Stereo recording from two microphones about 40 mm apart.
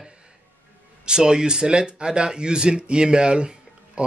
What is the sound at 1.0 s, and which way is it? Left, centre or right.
Speech, centre.